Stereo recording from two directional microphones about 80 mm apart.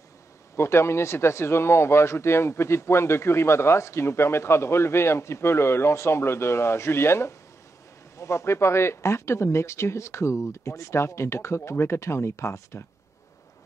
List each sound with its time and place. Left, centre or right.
0.6 s speech: left